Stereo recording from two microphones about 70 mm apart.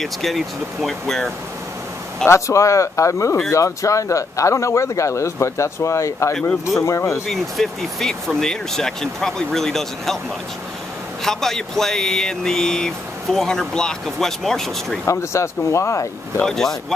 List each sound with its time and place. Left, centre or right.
0.0 s speech: centre
2.2 s speech: left
7.2 s speech: centre
11.2 s speech: centre
15.0 s speech: left
16.4 s speech: centre